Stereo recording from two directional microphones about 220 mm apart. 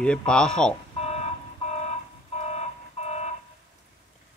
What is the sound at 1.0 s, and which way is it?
Alarm clock, 30° left (ahead or behind).